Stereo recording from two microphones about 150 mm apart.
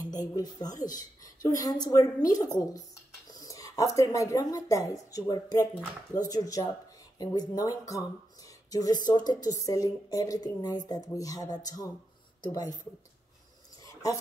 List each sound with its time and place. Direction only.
0.0 s speech: 25° left (ahead or behind)